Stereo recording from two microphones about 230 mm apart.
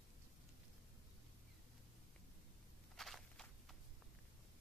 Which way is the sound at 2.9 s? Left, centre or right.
Centre.